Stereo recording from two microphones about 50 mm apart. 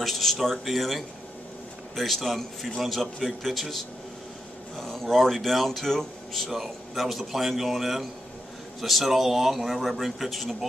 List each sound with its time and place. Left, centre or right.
0.0 s speech: centre